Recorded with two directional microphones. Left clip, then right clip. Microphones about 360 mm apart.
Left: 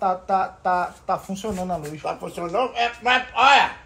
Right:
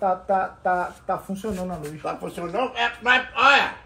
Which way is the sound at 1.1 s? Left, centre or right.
Centre.